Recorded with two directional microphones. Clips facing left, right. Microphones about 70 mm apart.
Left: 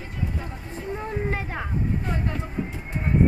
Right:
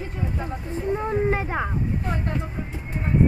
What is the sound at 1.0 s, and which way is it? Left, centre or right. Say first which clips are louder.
Speech: right 5 dB; centre.